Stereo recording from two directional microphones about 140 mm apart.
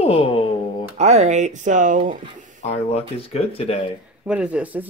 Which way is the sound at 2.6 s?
55° left (ahead or behind).